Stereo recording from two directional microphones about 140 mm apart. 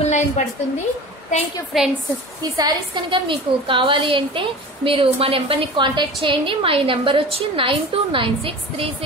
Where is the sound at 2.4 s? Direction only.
30° right (ahead or behind).